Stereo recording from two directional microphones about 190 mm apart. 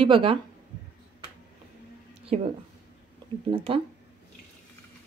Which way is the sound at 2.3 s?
35° right (ahead or behind).